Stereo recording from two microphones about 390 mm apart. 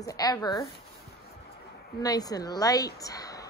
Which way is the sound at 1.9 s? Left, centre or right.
Centre.